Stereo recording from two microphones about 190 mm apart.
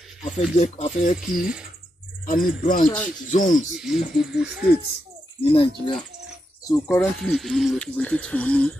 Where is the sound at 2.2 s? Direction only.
45° left (ahead or behind).